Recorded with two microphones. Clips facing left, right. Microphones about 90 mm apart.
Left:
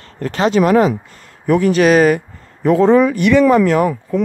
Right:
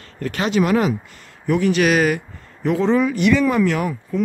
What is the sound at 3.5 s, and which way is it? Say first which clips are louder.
Speech: left 6 dB; 45° left (ahead or behind).